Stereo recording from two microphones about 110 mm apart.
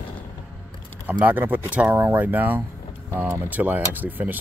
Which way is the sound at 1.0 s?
15° right (ahead or behind).